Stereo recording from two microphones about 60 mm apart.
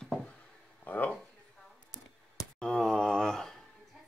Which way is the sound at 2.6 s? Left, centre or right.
Centre.